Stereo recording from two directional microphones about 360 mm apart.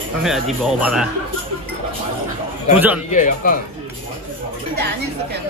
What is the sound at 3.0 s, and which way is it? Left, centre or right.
Speech, left.